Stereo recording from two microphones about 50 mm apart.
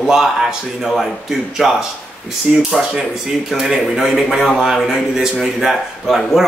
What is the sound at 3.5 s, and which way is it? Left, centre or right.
A man's voice, centre.